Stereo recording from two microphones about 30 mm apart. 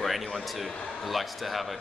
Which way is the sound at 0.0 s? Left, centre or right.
Centre.